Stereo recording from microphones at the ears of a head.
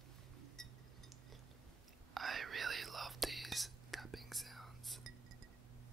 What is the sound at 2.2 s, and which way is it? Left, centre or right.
Whispering, right.